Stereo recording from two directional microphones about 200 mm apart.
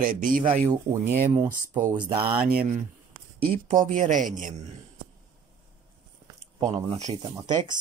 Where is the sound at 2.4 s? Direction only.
45° right (ahead or behind).